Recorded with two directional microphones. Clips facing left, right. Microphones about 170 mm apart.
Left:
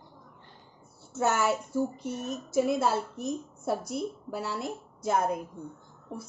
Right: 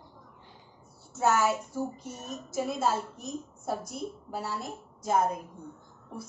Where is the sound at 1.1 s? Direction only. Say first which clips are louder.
Right 1 dB; 60° left (ahead or behind).